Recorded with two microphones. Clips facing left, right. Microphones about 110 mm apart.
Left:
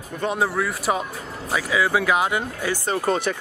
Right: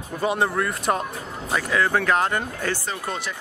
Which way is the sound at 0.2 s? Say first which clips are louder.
Even; centre (ahead or behind).